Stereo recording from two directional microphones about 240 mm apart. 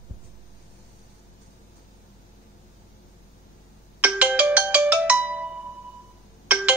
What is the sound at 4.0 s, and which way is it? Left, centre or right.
Ringtone, centre.